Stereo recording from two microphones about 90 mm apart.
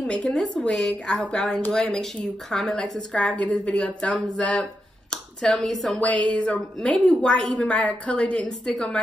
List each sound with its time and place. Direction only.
0.0 s a woman's voice: 5° left (ahead or behind)
5.9 s a woman's voice: 15° left (ahead or behind)